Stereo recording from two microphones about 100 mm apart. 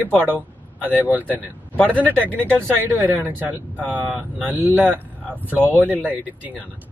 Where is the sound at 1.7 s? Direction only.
15° left (ahead or behind).